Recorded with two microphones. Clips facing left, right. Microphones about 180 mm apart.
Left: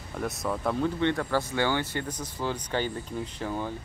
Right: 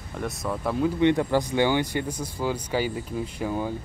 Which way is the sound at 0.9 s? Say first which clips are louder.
Right 5 dB; 15° right (ahead or behind).